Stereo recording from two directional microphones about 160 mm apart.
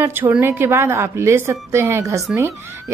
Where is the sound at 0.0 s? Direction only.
10° right (ahead or behind).